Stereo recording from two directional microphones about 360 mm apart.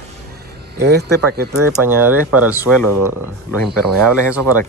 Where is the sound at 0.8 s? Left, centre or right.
Right.